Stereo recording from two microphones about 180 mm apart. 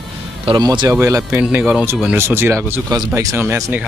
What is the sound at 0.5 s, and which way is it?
Speech, 25° right (ahead or behind).